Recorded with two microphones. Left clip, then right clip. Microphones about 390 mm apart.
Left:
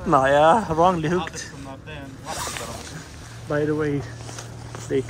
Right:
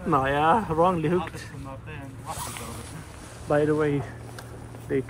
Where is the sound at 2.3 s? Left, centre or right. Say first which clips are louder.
Left 9 dB; left.